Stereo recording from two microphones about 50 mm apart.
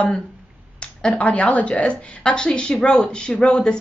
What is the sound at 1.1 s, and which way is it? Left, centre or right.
A woman's voice, left.